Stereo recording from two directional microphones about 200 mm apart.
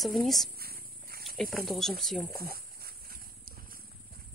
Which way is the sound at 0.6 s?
50° right (ahead or behind).